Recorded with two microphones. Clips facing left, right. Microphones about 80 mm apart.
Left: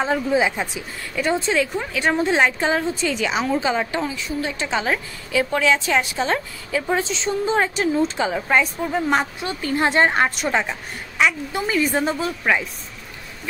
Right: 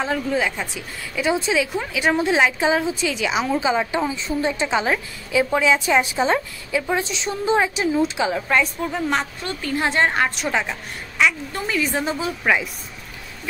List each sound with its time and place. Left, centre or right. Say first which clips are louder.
0.0 s a woman's voice: left 3 dB; centre
1.1 s a woman's voice: even; centre
4.1 s a woman's voice: right 3 dB; right
4.6 s a woman's voice: right 1 dB; centre
8.4 s a woman's voice: left 1 dB; centre